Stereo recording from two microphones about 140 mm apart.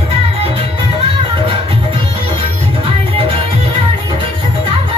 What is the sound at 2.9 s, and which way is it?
Music, 40° right (ahead or behind).